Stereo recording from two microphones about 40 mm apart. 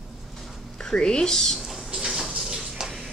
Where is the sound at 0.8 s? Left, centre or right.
Left.